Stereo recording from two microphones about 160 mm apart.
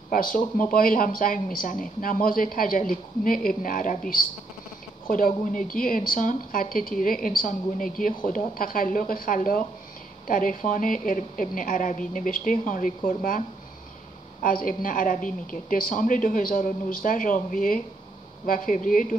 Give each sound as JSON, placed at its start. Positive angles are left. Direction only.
{"t": 0.1, "sound": "speech", "side_deg": 60}
{"t": 5.0, "sound": "speech", "side_deg": 60}
{"t": 14.4, "sound": "speech", "side_deg": 60}
{"t": 18.9, "sound": "speech", "side_deg": 60}